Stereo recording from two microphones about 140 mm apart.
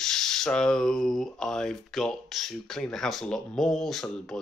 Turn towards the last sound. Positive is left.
turn(degrees=0)  # may be behind; listen again after turning